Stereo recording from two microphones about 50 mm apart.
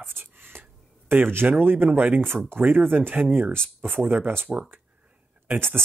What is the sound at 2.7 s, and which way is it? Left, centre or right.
Speech, right.